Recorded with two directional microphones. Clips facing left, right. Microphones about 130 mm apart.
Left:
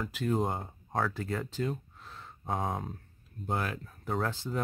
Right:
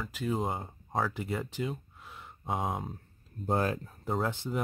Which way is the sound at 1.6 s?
5° right (ahead or behind).